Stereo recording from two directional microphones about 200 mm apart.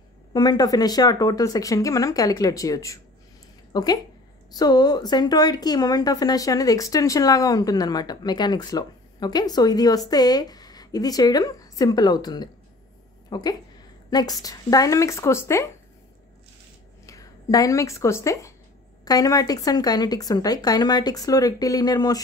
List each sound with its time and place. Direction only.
0.3 s a woman's voice: 20° left (ahead or behind)
17.0 s a woman's voice: 15° left (ahead or behind)